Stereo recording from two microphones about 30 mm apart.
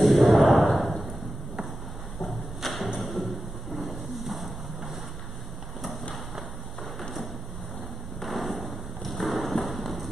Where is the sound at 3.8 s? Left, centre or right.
Centre.